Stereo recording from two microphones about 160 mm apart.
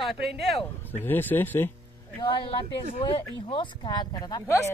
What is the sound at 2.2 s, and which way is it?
A woman's voice, 30° left (ahead or behind).